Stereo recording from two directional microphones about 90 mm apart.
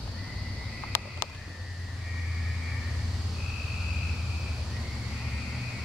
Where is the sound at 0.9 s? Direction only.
25° left (ahead or behind).